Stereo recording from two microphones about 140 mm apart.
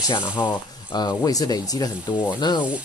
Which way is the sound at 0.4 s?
25° left (ahead or behind).